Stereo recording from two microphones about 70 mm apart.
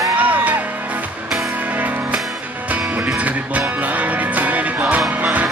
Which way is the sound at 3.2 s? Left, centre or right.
Right.